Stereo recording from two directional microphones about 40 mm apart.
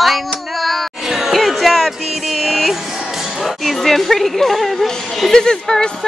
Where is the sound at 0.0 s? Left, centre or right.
Centre.